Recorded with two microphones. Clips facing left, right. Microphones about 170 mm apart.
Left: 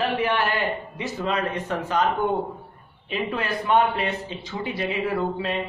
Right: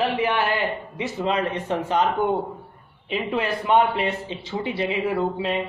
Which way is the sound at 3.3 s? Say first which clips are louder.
Right 2 dB; 25° right (ahead or behind).